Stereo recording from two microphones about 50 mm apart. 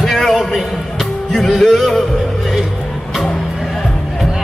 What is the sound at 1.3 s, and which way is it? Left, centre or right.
Music, centre.